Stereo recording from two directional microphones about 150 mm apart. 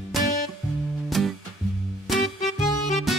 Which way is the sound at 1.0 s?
Centre (ahead or behind).